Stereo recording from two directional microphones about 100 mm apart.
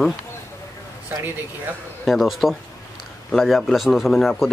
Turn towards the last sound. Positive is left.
turn(degrees=0)  # may be behind; listen again after turning